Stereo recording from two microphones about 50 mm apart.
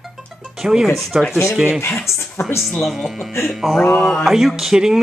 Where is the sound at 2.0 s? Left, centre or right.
Left.